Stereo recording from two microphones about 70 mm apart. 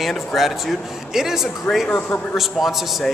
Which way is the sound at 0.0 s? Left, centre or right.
Centre.